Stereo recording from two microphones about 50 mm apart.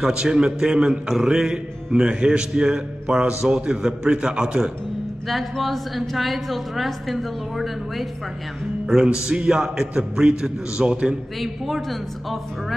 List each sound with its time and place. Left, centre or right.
0.1 s a man's voice: centre
5.3 s a woman's voice: centre
8.8 s a man's voice: centre
11.3 s a woman's voice: centre